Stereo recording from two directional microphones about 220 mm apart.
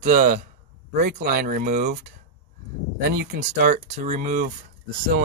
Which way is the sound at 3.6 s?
30° right (ahead or behind).